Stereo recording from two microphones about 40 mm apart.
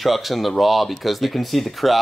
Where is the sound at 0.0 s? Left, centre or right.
Centre.